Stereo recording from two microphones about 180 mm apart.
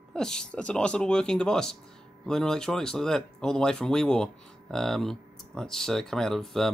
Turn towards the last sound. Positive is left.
turn(degrees=0)  # may be behind; listen again after turning